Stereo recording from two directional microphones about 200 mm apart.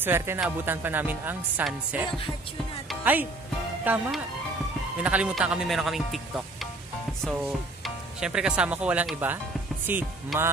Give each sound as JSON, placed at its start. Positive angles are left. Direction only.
{"t": 0.0, "sound": "speech", "side_deg": -10}
{"t": 2.0, "sound": "music", "side_deg": 25}
{"t": 2.9, "sound": "speech", "side_deg": -10}